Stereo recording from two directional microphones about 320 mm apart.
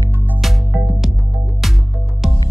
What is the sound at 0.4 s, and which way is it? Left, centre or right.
Music, centre.